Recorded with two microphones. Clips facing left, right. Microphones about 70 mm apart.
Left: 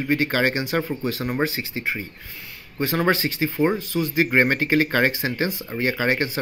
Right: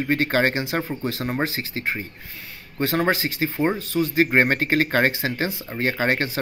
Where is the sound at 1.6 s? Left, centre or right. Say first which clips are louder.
Even; right.